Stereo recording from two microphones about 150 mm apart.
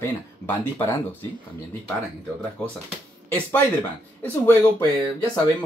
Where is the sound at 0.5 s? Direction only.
15° left (ahead or behind).